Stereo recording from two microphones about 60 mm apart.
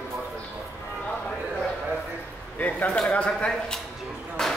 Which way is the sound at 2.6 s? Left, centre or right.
Left.